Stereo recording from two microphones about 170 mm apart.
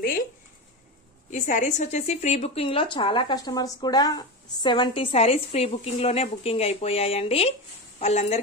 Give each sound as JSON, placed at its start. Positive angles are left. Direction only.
{"t": 1.3, "sound": "speech", "side_deg": 45}